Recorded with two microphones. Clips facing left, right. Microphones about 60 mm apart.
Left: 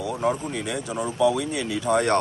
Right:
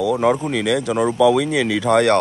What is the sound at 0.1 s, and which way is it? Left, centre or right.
Speech, right.